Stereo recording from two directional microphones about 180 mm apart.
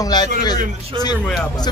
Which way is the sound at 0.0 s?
20° left (ahead or behind).